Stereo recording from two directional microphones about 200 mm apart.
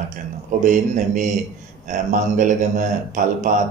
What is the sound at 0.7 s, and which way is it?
A man's voice, 40° right (ahead or behind).